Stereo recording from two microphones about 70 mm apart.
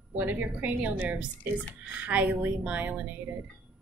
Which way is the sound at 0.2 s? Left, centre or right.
Right.